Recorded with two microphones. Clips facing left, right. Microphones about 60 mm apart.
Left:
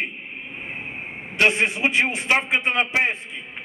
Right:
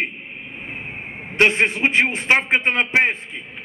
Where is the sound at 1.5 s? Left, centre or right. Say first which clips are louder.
Right 3 dB; right.